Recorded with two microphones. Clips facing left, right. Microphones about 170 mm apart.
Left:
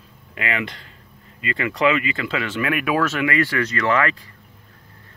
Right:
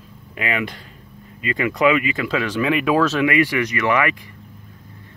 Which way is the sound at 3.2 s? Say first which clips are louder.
Right 3 dB; 15° right (ahead or behind).